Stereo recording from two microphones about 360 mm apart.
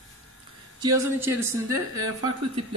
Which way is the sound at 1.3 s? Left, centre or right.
Centre.